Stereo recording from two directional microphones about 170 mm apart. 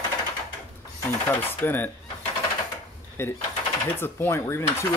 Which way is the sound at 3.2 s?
15° left (ahead or behind).